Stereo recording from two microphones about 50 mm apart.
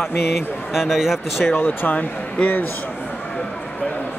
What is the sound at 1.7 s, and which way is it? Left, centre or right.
Speech, left.